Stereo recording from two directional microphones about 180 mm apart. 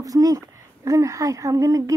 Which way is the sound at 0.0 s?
20° right (ahead or behind).